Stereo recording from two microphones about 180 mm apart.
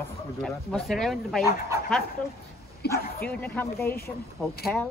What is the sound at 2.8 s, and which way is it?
Speech, 65° left (ahead or behind).